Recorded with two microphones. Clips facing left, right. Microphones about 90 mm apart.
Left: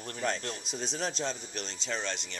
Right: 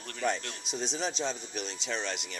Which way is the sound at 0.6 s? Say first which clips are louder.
Right 3 dB; centre (ahead or behind).